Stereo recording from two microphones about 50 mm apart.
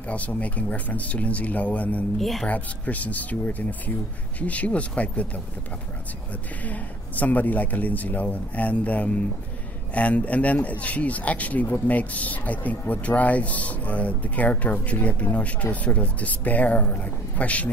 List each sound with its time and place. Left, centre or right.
0.1 s a man's voice: left
2.1 s speech: centre
2.4 s a man's voice: left
6.6 s a man's voice: left